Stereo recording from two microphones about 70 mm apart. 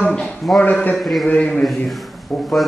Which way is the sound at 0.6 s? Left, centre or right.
Left.